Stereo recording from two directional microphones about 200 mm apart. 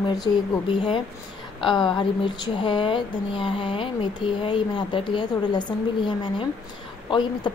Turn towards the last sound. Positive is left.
turn(degrees=20)  # may be behind; listen again after turning